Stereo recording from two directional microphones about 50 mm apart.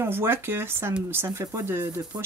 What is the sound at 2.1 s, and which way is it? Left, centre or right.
Speech, right.